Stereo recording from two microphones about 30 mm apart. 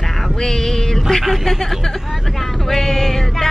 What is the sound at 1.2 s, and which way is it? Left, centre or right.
Speech, centre.